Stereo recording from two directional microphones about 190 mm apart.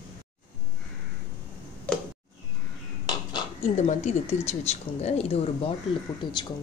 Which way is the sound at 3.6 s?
40° left (ahead or behind).